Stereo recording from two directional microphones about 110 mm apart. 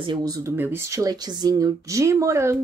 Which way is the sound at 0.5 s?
20° right (ahead or behind).